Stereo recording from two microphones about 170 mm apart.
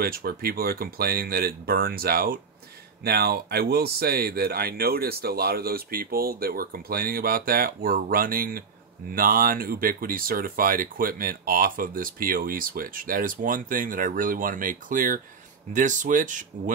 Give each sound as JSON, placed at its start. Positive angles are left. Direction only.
{"t": 0.0, "sound": "speech", "side_deg": -60}